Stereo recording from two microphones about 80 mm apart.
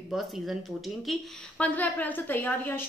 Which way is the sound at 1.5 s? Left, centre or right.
Centre.